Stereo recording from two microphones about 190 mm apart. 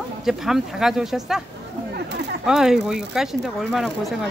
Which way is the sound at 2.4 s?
Centre (ahead or behind).